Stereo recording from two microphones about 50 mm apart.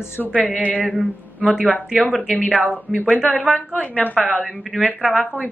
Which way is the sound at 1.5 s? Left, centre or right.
Right.